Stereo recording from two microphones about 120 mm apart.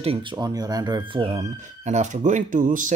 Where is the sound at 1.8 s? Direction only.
85° right.